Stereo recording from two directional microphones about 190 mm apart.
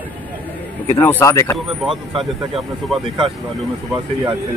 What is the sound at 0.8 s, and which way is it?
Speech, 10° left (ahead or behind).